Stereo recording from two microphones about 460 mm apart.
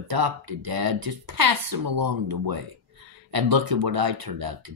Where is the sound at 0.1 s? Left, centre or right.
Right.